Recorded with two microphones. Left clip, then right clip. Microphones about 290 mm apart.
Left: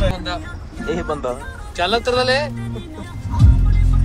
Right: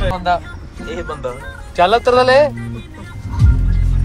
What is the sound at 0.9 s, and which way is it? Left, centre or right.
Speech, left.